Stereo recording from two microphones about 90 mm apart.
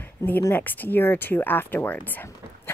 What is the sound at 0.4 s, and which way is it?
A woman's voice, 25° left (ahead or behind).